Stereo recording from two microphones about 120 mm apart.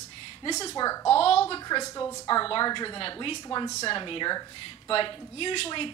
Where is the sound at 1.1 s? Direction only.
55° left (ahead or behind).